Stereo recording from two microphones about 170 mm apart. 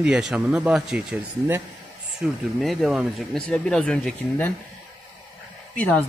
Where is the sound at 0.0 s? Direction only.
5° right (ahead or behind).